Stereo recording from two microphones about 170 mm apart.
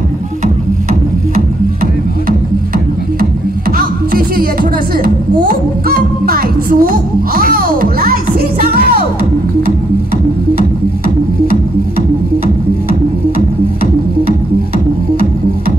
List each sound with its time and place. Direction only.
3.7 s music: 60° right (ahead or behind)